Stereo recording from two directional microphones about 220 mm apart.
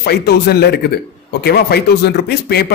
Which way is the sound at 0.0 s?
45° left (ahead or behind).